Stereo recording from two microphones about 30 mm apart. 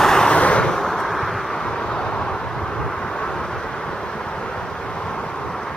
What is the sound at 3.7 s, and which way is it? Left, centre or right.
Vehicle, left.